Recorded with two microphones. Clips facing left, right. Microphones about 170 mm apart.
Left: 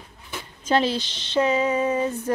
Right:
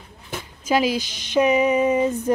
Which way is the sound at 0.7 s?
10° right (ahead or behind).